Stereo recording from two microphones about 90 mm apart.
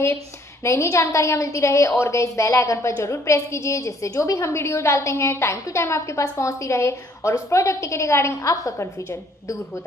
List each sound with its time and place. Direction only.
0.7 s a woman's voice: 35° left (ahead or behind)